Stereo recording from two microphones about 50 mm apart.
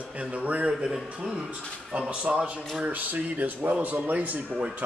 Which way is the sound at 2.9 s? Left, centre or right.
Right.